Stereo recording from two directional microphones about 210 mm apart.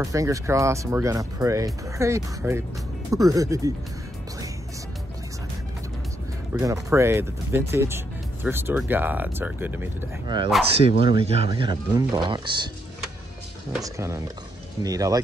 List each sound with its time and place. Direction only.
0.0 s speech: 15° right (ahead or behind)
6.6 s speech: 15° right (ahead or behind)
10.2 s speech: 20° right (ahead or behind)
13.8 s speech: 15° right (ahead or behind)